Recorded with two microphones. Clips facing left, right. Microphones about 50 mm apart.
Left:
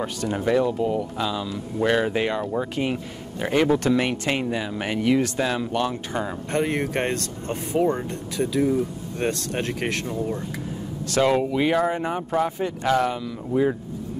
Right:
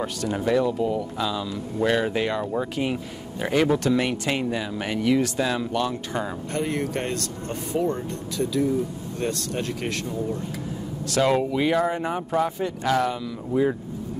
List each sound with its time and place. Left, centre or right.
0.0 s speech: centre
6.5 s speech: left
11.1 s speech: centre
13.5 s speech: centre